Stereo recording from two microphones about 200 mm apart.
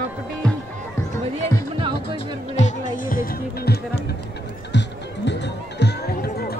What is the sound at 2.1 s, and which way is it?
Music, 35° left (ahead or behind).